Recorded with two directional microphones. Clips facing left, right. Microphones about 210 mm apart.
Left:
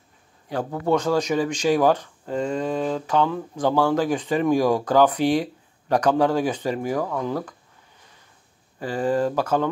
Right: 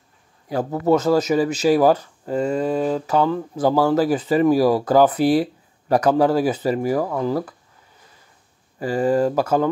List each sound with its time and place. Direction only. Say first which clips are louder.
0.5 s speech: right 4 dB; 10° right (ahead or behind)
8.7 s speech: right 4 dB; 10° right (ahead or behind)